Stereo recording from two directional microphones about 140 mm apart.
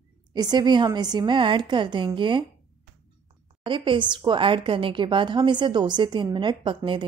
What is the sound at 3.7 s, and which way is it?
A woman's voice, 35° right (ahead or behind).